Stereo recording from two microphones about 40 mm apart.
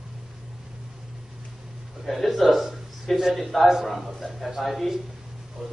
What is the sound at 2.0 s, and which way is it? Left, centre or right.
A man's voice, centre.